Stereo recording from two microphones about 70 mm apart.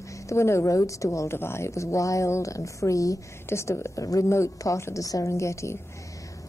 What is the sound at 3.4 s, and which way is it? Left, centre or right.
A woman's voice, left.